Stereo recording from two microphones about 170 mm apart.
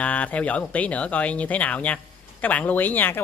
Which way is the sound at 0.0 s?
10° left (ahead or behind).